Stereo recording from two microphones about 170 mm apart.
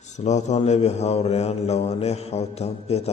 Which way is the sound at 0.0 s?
45° left (ahead or behind).